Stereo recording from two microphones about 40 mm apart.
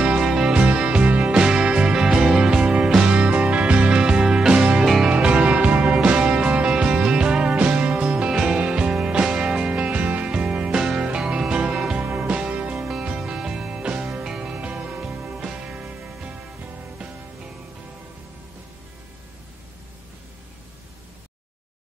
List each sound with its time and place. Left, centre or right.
0.2 s music: centre
0.7 s music: right
1.0 s music: right
1.3 s music: right
2.6 s music: right
4.8 s music: centre
5.1 s music: right
8.3 s music: centre; by 10.3 s right
10.3 s music: right
10.7 s music: centre
12.0 s music: right
12.7 s music: centre
14.5 s music: right
15.0 s music: right